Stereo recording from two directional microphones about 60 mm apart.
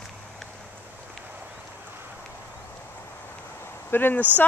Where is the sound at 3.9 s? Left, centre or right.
Left.